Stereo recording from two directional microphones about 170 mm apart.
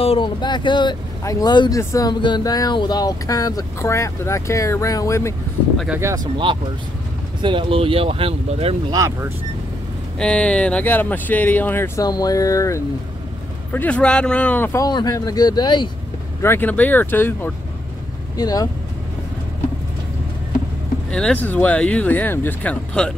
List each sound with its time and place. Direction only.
0.0 s speech: 30° left (ahead or behind)
5.9 s speech: 15° right (ahead or behind)
6.3 s speech: 30° right (ahead or behind)
8.9 s speech: 15° right (ahead or behind)
10.1 s speech: 5° left (ahead or behind)
13.7 s speech: 10° left (ahead or behind); by 15.9 s 25° left (ahead or behind)
16.4 s speech: 10° left (ahead or behind)
18.4 s speech: 20° left (ahead or behind)
21.1 s speech: 5° left (ahead or behind)